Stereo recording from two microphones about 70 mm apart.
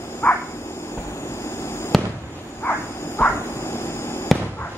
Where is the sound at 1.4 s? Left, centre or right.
Left.